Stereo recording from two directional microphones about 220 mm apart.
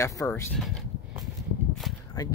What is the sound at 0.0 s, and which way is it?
Speech, 15° left (ahead or behind).